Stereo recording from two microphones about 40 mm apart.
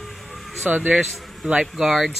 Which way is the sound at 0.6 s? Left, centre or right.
Right.